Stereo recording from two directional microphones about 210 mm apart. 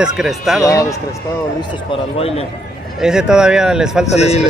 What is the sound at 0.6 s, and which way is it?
Speech, 15° left (ahead or behind).